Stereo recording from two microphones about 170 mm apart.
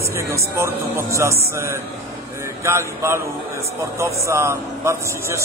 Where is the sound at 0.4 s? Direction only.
15° right (ahead or behind).